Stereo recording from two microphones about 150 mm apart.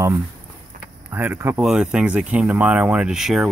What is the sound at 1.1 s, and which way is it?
Speech, 10° right (ahead or behind).